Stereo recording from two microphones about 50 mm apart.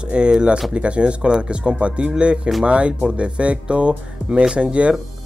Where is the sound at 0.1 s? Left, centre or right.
Centre.